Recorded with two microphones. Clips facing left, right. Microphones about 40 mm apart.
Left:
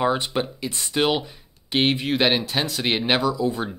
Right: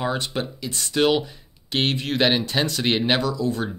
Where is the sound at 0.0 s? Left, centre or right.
Centre.